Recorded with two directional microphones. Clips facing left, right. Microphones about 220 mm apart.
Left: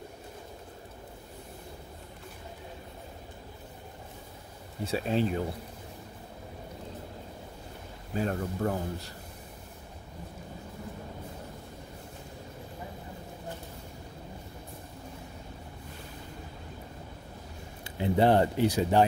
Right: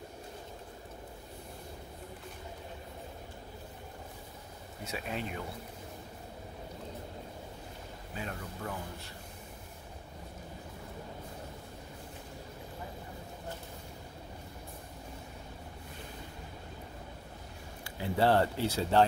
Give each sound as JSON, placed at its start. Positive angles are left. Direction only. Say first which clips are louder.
{"t": 4.8, "sound": "a man's voice", "louder": "left 10 dB", "side_deg": 30}
{"t": 8.2, "sound": "a man's voice", "louder": "left 11 dB", "side_deg": 45}
{"t": 17.8, "sound": "speech", "louder": "left 4 dB", "side_deg": 20}